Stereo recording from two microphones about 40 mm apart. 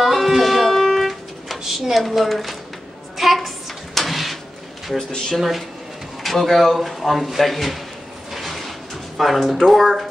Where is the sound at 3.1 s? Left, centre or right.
Centre.